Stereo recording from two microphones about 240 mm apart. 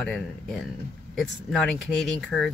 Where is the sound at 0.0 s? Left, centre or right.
Centre.